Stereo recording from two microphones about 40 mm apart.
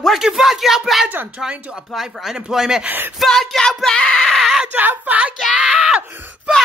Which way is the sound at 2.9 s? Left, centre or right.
Right.